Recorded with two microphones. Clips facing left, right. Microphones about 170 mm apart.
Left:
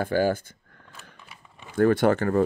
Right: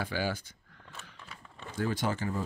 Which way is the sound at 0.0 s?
50° left (ahead or behind).